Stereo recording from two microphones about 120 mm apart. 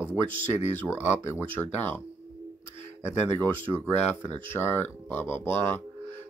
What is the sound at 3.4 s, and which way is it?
Speech, 20° left (ahead or behind).